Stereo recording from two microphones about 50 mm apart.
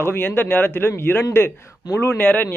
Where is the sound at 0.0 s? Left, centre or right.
Left.